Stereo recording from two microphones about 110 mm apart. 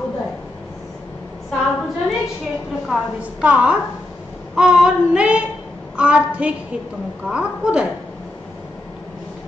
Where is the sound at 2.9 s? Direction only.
5° right (ahead or behind).